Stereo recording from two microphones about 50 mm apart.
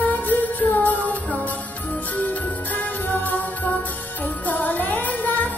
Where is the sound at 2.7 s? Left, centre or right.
Left.